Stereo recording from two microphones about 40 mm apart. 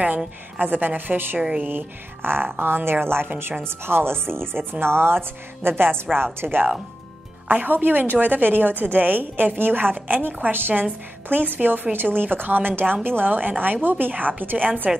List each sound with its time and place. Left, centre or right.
0.6 s a woman's voice: right
1.6 s a woman's voice: right
2.2 s a woman's voice: right
3.6 s a woman's voice: right
7.4 s a woman's voice: right